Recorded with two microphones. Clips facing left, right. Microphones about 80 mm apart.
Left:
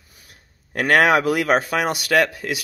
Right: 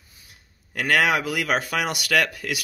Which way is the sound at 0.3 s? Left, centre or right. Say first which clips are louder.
Left 6 dB; left.